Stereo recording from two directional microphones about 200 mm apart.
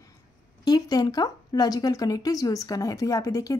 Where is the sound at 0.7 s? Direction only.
20° left (ahead or behind).